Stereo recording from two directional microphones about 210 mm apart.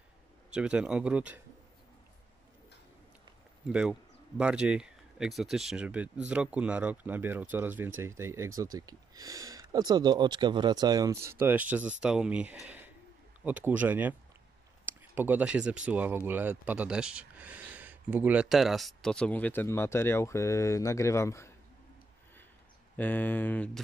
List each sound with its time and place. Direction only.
0.5 s speech: 5° right (ahead or behind)
3.6 s speech: 5° right (ahead or behind); by 21.5 s 15° left (ahead or behind)
22.9 s speech: 10° left (ahead or behind)